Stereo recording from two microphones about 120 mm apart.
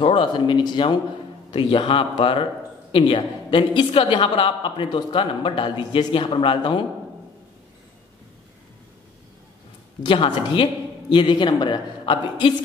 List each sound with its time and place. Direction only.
0.0 s a woman's voice: 40° left (ahead or behind)
10.0 s a woman's voice: 45° left (ahead or behind)